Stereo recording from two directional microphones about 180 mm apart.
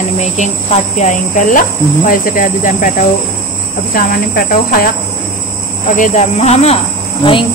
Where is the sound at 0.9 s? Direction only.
45° left (ahead or behind).